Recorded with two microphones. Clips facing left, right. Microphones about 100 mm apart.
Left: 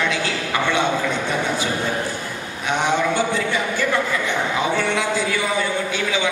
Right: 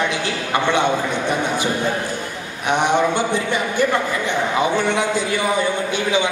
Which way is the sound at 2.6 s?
20° right (ahead or behind).